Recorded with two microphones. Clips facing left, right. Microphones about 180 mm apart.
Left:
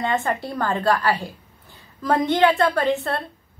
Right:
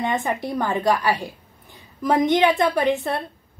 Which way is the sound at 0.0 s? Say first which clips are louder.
Even; 15° right (ahead or behind).